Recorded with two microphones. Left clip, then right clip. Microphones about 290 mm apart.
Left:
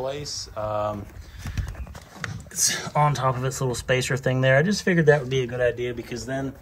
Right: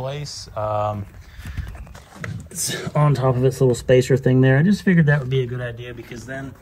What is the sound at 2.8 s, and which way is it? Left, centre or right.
Speech, right.